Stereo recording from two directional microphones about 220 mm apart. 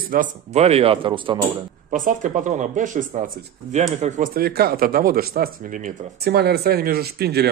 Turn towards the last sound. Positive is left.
turn(degrees=-45)  # may be behind; listen again after turning